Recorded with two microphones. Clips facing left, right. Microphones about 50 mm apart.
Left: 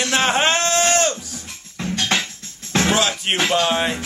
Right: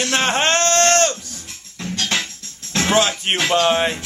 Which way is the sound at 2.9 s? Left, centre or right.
Centre.